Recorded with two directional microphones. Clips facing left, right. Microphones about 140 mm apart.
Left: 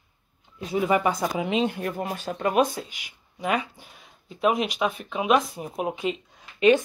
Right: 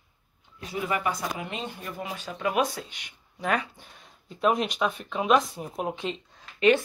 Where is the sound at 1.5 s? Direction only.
75° left (ahead or behind); by 2.5 s 45° left (ahead or behind).